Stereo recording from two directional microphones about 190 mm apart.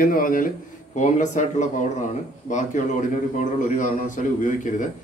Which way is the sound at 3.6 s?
40° left (ahead or behind).